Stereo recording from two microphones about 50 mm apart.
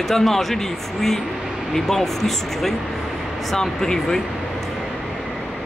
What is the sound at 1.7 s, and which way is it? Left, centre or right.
Speech, centre.